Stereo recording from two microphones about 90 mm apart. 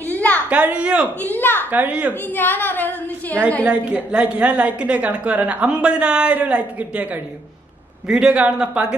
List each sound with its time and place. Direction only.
0.0 s a sound: 20° left (ahead or behind)
0.5 s a woman's voice: 15° right (ahead or behind)
1.2 s a woman's voice: 20° left (ahead or behind)
1.7 s a woman's voice: 15° right (ahead or behind)
2.2 s a woman's voice: 20° left (ahead or behind)
3.6 s a woman's voice: 15° right (ahead or behind)